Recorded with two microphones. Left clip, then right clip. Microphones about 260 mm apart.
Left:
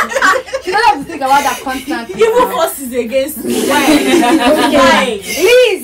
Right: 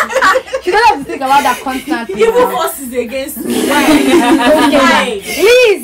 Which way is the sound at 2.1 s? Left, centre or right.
Centre.